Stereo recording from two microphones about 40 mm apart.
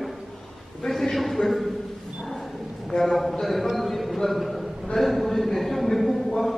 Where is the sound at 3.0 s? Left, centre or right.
Centre.